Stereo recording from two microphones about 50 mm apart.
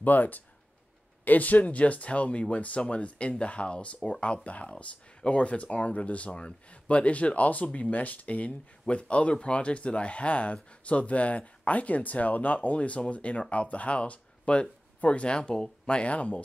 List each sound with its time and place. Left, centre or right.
0.0 s speech: left